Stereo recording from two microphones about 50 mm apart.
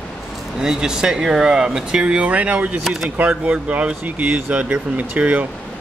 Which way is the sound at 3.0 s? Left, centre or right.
Right.